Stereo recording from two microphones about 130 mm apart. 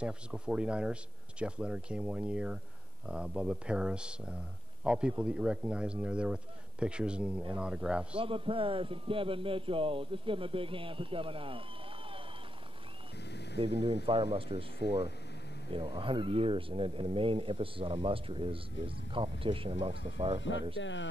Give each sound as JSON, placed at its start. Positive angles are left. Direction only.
{"t": 0.0, "sound": "a man's voice", "side_deg": -5}
{"t": 8.2, "sound": "speech", "side_deg": -45}
{"t": 13.6, "sound": "speech", "side_deg": -45}
{"t": 15.7, "sound": "speech", "side_deg": -40}